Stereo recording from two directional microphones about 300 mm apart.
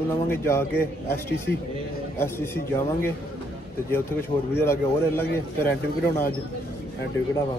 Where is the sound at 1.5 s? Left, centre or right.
Left.